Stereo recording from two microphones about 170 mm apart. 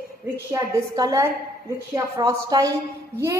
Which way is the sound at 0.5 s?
20° right (ahead or behind).